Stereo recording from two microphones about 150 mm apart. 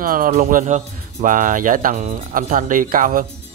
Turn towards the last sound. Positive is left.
turn(degrees=-65)  # may be behind; listen again after turning